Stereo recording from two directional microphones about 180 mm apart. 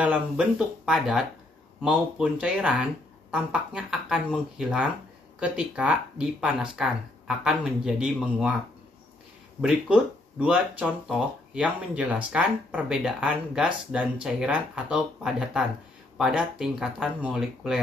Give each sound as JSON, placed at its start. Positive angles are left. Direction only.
{"t": 0.0, "sound": "speech", "side_deg": -5}
{"t": 9.6, "sound": "speech", "side_deg": -5}